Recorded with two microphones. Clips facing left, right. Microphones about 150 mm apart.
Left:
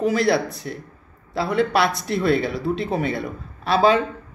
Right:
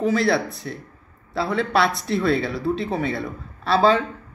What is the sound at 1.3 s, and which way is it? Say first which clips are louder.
A man's voice: left 1 dB; 10° left (ahead or behind).